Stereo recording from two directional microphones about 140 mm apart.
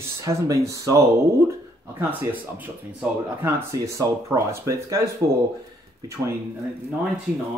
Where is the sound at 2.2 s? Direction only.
10° right (ahead or behind).